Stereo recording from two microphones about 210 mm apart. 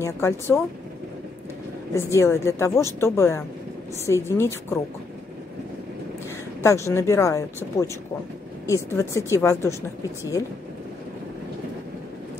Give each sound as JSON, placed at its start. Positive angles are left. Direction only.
{"t": 0.0, "sound": "a woman's voice", "side_deg": 10}
{"t": 2.0, "sound": "a woman's voice", "side_deg": 15}
{"t": 6.6, "sound": "a woman's voice", "side_deg": 15}